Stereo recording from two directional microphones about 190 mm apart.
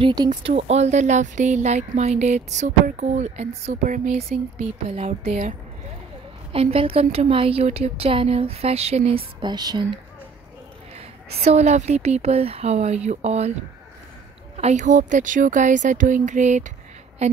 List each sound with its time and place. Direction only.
0.0 s speech: 20° right (ahead or behind)
0.3 s speech: 35° right (ahead or behind)
6.5 s speech: 30° right (ahead or behind)
11.3 s speech: 35° right (ahead or behind)
14.6 s a woman's voice: 40° right (ahead or behind)